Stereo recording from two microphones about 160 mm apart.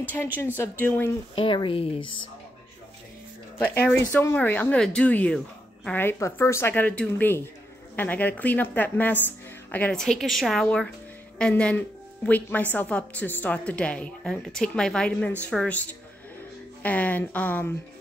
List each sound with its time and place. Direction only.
0.2 s a woman's voice: 10° left (ahead or behind)
1.3 s speech: 35° left (ahead or behind)
3.5 s a woman's voice: 10° left (ahead or behind)
16.8 s a woman's voice: 10° left (ahead or behind)